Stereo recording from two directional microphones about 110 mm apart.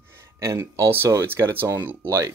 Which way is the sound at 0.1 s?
25° right (ahead or behind).